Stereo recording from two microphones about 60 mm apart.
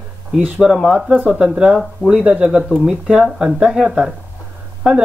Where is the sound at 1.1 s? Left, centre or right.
Right.